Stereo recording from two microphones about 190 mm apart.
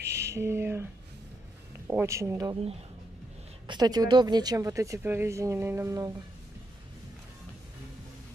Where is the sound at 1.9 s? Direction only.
10° right (ahead or behind).